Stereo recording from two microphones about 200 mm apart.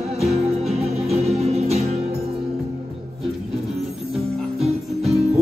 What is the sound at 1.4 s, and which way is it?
Music, 30° right (ahead or behind).